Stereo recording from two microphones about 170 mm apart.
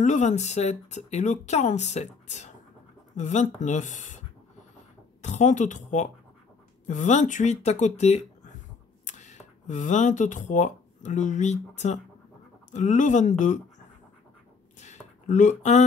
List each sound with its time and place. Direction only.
0.0 s speech: 45° left (ahead or behind)
5.2 s speech: 45° left (ahead or behind)
14.8 s a sound: 45° left (ahead or behind)